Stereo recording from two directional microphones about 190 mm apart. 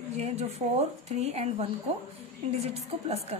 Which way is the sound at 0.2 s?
35° right (ahead or behind).